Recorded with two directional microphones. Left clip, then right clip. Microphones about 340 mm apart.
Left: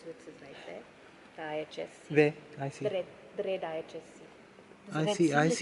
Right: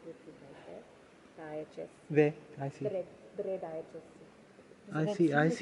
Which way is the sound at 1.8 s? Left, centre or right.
Centre.